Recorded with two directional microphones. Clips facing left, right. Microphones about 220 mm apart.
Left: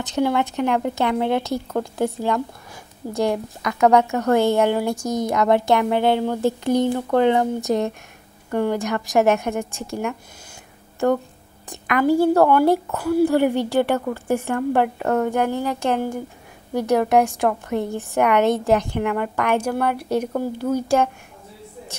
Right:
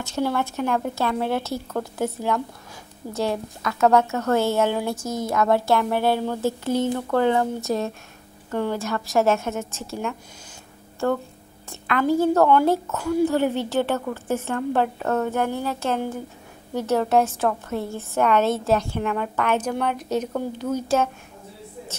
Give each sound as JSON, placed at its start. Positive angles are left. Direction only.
{"t": 0.0, "sound": "a woman's voice", "side_deg": 15}